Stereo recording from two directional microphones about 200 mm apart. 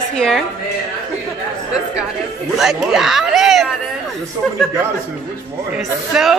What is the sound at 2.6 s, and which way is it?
Speech, centre (ahead or behind).